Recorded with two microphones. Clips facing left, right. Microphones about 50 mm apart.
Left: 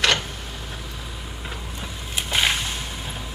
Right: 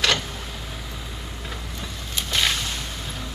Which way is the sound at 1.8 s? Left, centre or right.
Left.